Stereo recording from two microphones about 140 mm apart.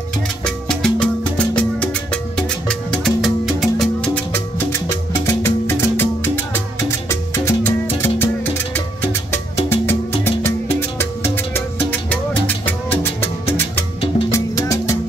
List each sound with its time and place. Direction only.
0.5 s music: 5° left (ahead or behind)
7.1 s salsa music: 20° left (ahead or behind)
9.7 s music: 15° left (ahead or behind)